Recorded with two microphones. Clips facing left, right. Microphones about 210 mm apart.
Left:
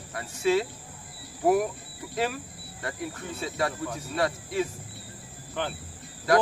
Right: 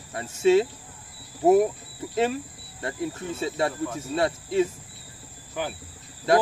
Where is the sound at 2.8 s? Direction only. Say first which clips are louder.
Right 5 dB; 25° right (ahead or behind).